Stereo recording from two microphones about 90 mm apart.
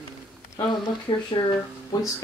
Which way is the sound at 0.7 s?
60° left (ahead or behind).